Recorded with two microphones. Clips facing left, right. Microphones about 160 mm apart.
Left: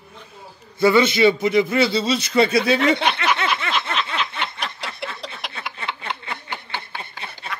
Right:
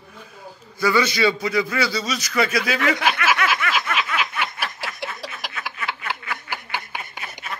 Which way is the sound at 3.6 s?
25° left (ahead or behind).